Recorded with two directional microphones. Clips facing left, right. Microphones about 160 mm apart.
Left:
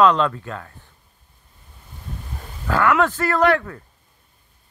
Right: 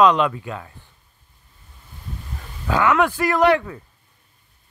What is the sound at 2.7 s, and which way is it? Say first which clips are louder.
Speech: even; 15° right (ahead or behind).